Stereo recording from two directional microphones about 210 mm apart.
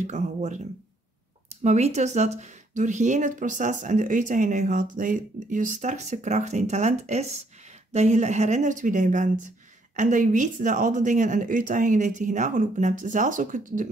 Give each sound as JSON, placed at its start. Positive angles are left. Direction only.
{"t": 0.0, "sound": "speech", "side_deg": -35}
{"t": 1.6, "sound": "speech", "side_deg": -35}